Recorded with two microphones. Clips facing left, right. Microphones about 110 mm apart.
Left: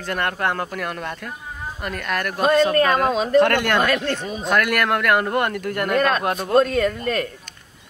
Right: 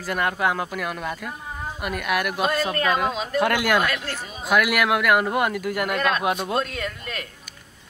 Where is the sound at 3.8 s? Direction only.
45° left (ahead or behind).